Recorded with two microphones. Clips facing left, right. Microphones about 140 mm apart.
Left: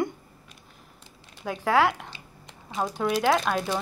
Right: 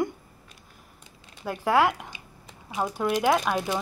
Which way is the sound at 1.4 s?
10° right (ahead or behind).